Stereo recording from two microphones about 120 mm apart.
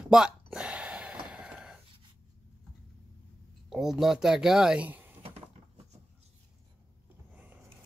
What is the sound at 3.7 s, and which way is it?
Speech, 5° right (ahead or behind).